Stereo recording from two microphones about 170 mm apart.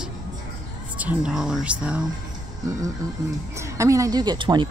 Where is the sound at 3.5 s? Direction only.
15° right (ahead or behind).